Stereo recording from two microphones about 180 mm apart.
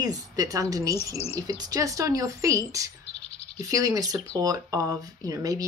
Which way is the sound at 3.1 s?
35° left (ahead or behind).